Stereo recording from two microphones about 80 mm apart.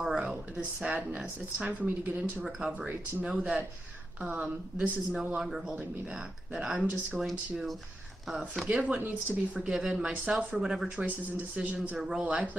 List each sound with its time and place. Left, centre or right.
0.0 s a sound: centre
0.8 s speech: centre
2.4 s speech: centre
8.6 s speech: centre
11.0 s speech: centre